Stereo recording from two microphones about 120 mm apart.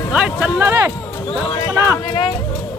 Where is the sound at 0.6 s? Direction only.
20° right (ahead or behind).